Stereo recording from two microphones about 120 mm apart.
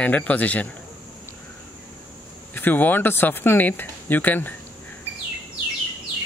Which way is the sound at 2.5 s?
15° left (ahead or behind).